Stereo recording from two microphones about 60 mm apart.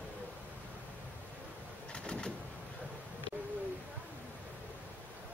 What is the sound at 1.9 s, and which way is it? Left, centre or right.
Bird, centre.